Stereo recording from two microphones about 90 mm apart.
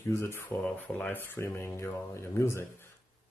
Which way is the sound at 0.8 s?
15° left (ahead or behind).